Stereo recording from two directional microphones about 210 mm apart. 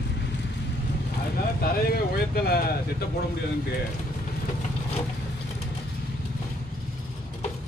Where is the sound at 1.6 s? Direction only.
45° left (ahead or behind).